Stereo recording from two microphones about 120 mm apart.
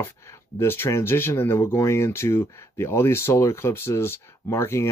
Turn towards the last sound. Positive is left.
turn(degrees=25)  # may be behind; listen again after turning